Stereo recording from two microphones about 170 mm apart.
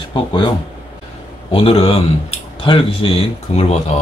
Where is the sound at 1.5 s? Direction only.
35° left (ahead or behind).